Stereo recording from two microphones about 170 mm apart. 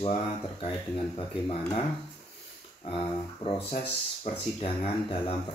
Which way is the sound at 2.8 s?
30° left (ahead or behind).